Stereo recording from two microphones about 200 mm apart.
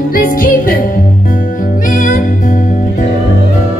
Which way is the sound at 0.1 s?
45° left (ahead or behind).